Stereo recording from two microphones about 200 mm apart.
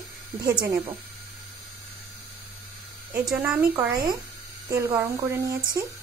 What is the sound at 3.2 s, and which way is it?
Speech, 5° right (ahead or behind).